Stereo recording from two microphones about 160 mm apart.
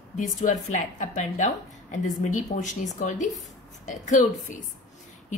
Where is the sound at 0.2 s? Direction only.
50° left (ahead or behind).